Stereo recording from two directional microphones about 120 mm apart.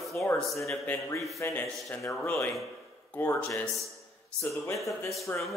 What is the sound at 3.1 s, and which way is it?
A man's voice, 20° left (ahead or behind).